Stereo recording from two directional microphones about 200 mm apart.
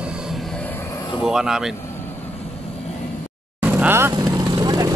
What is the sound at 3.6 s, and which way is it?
Vehicle, 10° right (ahead or behind).